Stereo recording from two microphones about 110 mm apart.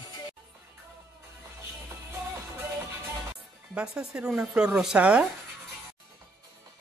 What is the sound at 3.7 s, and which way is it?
Speech, 10° right (ahead or behind).